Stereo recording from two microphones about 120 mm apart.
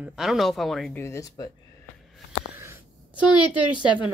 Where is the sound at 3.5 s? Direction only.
40° left (ahead or behind).